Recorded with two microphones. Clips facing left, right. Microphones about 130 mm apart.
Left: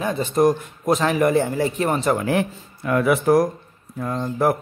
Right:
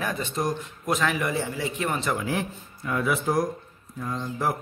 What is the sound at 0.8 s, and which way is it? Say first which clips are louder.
A man's voice: left 7 dB; 35° left (ahead or behind).